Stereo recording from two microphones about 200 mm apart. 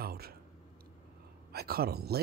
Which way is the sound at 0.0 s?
50° right (ahead or behind).